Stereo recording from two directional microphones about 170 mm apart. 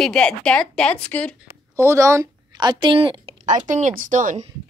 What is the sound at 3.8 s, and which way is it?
Speech, 50° right (ahead or behind).